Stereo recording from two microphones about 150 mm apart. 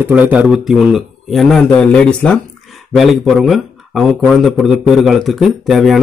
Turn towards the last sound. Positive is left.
turn(degrees=0)  # may be behind; listen again after turning